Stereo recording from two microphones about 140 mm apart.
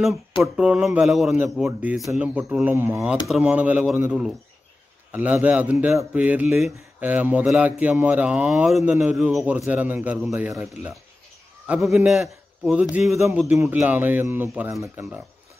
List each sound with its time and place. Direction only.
0.4 s speech: 5° right (ahead or behind)
2.2 s speech: 15° right (ahead or behind)
11.6 s a man's voice: 5° right (ahead or behind)
14.7 s speech: 20° right (ahead or behind)